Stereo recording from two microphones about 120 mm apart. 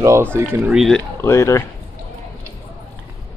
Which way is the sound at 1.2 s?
25° left (ahead or behind).